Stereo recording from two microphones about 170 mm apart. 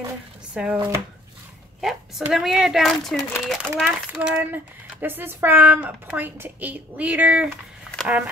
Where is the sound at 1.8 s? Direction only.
Centre (ahead or behind).